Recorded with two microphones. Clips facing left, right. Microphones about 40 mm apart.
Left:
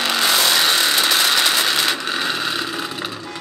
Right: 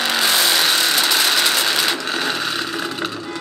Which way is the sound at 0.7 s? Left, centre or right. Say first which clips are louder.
Even; centre.